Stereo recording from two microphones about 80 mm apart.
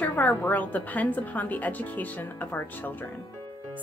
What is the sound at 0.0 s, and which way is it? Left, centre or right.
A woman's voice, left.